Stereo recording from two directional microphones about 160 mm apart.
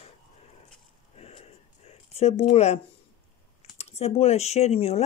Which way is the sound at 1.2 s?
40° left (ahead or behind).